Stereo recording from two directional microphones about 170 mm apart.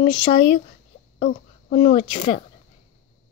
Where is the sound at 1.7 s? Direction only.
40° left (ahead or behind).